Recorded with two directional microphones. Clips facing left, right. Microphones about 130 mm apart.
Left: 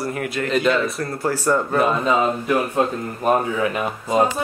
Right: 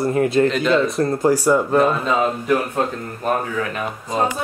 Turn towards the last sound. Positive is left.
turn(degrees=15)  # may be behind; listen again after turning